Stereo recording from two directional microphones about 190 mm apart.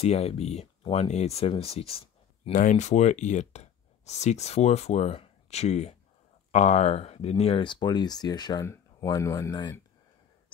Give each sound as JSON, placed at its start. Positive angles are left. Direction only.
{"t": 0.0, "sound": "speech", "side_deg": 35}
{"t": 2.5, "sound": "speech", "side_deg": 45}